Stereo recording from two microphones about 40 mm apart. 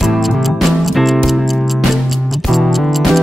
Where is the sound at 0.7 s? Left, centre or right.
Centre.